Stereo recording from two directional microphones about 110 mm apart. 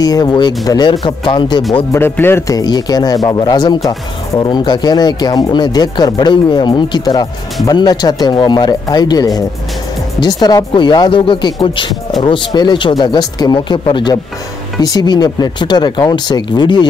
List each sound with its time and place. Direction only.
0.0 s speech: 35° left (ahead or behind)
1.9 s speech: 20° left (ahead or behind)
2.5 s speech: 40° left (ahead or behind)